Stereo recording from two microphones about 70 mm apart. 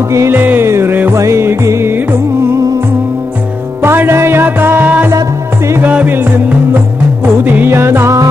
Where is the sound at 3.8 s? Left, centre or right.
Right.